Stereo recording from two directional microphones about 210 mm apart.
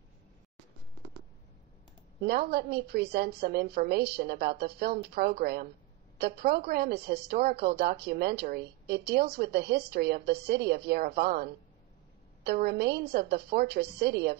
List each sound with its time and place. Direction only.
2.2 s a woman's voice: 50° right (ahead or behind)